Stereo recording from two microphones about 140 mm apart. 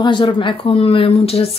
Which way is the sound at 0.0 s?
35° left (ahead or behind).